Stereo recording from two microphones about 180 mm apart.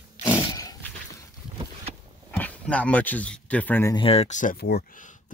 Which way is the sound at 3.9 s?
30° left (ahead or behind).